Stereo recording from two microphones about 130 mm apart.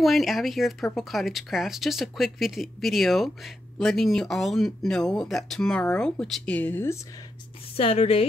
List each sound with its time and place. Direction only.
0.0 s speech: centre (ahead or behind); by 7.0 s 15° left (ahead or behind)
7.7 s a woman's voice: 50° left (ahead or behind)